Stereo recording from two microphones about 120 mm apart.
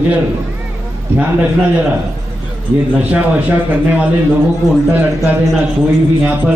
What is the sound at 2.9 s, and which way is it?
A man's voice, 10° right (ahead or behind).